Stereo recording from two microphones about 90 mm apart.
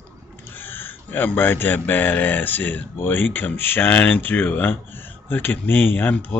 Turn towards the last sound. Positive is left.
turn(degrees=20)  # may be behind; listen again after turning